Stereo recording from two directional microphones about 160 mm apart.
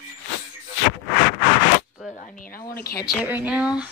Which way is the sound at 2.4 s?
65° left (ahead or behind).